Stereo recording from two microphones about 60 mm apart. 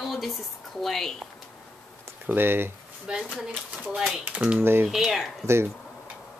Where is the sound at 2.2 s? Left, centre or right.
Right.